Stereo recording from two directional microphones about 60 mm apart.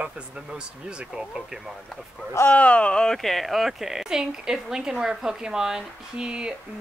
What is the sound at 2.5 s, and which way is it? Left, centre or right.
A woman's voice, left.